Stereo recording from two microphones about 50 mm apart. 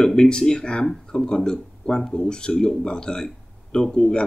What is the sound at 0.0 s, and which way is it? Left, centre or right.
Speech, centre.